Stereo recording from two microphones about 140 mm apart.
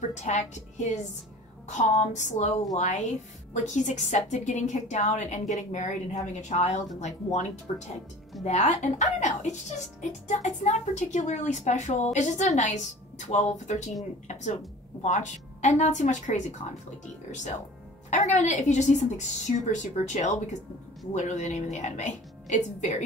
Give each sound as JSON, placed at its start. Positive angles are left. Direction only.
{"t": 0.1, "sound": "a woman's voice", "side_deg": 55}
{"t": 18.1, "sound": "a woman's voice", "side_deg": 55}